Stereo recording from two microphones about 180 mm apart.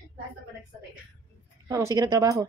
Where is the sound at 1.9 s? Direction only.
20° right (ahead or behind).